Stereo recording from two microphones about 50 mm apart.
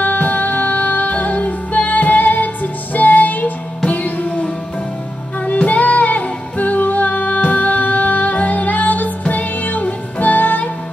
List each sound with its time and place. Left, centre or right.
0.0 s music: left